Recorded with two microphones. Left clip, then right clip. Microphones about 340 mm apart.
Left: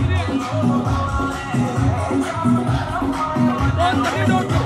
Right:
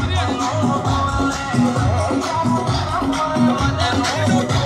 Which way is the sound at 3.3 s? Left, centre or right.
Right.